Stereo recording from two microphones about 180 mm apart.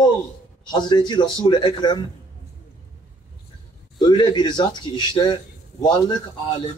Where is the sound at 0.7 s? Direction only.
25° left (ahead or behind).